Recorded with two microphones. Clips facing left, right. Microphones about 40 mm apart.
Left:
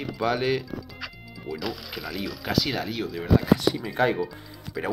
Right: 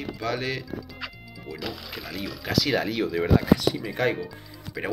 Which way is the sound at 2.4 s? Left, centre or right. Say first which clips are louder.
Right 1 dB; centre.